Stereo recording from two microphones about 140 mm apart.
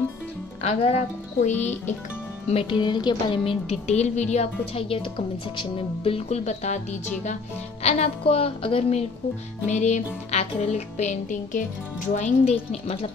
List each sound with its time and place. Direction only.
0.6 s speech: 45° left (ahead or behind)
1.4 s music: 55° left (ahead or behind)
2.5 s a woman's voice: 35° left (ahead or behind)
9.7 s music: 55° left (ahead or behind)
12.1 s a woman's voice: 60° left (ahead or behind)